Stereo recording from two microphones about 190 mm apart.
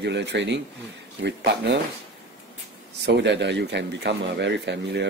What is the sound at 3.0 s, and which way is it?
Speech, 65° right (ahead or behind).